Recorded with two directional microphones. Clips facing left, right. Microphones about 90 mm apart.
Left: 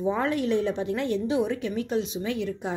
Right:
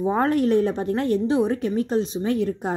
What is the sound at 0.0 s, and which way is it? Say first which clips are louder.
A woman's voice: right 5 dB; 45° right (ahead or behind).